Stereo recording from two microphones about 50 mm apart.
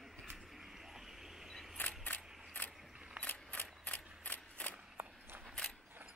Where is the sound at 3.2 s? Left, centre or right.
Left.